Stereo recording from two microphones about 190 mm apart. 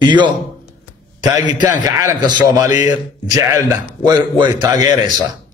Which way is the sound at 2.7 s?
40° left (ahead or behind).